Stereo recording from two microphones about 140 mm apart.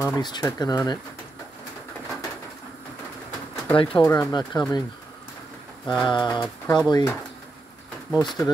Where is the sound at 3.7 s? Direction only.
40° left (ahead or behind).